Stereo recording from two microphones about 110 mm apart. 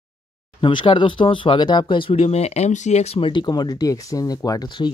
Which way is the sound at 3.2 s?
45° left (ahead or behind).